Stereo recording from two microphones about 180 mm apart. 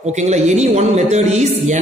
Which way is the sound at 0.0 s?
40° right (ahead or behind).